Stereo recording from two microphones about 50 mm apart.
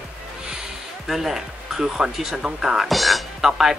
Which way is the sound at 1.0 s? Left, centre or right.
Centre.